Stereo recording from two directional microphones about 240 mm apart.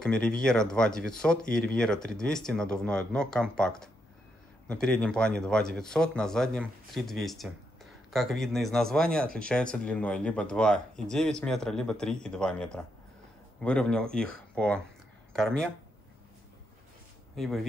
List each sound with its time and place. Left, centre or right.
0.0 s speech: centre
9.2 s speech: right
9.5 s speech: centre